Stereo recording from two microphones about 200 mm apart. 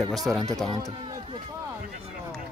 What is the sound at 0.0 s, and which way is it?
Speech, centre (ahead or behind).